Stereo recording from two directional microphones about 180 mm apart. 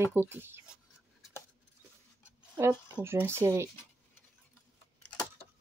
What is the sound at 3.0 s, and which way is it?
Speech, 15° right (ahead or behind).